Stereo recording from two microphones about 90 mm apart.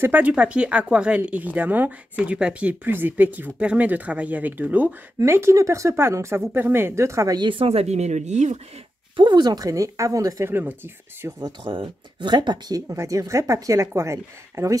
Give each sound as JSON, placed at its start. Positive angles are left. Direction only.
{"t": 0.0, "sound": "speech", "side_deg": -20}
{"t": 5.2, "sound": "speech", "side_deg": -30}
{"t": 7.3, "sound": "speech", "side_deg": -70}
{"t": 9.1, "sound": "speech", "side_deg": -60}
{"t": 10.5, "sound": "speech", "side_deg": -20}
{"t": 11.2, "sound": "speech", "side_deg": -40}
{"t": 11.6, "sound": "speech", "side_deg": -70}
{"t": 12.8, "sound": "speech", "side_deg": -35}